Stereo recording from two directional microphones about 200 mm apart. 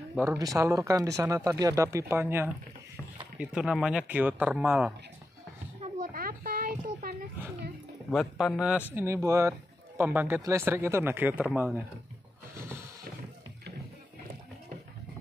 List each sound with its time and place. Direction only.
0.1 s speech: 10° right (ahead or behind)
5.8 s a sound: 40° right (ahead or behind)
8.1 s speech: centre (ahead or behind)